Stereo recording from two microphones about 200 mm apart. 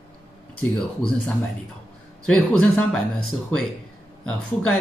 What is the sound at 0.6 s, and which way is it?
Speech, 5° left (ahead or behind).